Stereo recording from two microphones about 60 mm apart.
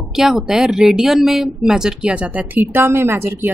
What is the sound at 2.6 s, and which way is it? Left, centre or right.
Speech, right.